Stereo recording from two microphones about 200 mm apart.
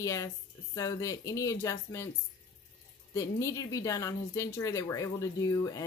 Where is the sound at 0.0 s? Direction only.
15° left (ahead or behind).